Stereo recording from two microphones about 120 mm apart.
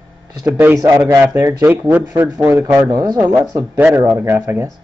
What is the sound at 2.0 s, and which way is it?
A man's voice, 30° right (ahead or behind).